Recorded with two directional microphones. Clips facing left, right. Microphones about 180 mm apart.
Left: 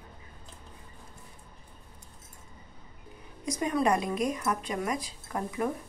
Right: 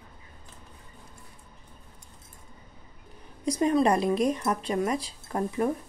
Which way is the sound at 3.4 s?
30° right (ahead or behind).